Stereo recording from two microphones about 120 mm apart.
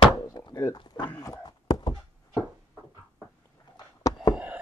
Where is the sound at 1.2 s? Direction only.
30° left (ahead or behind).